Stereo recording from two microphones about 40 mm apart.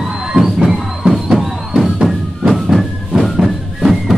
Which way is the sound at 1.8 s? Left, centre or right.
Centre.